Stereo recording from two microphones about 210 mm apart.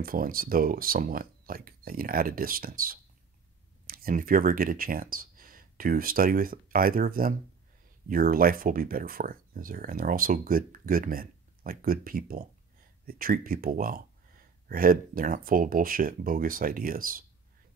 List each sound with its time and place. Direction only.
0.0 s speech: 45° right (ahead or behind)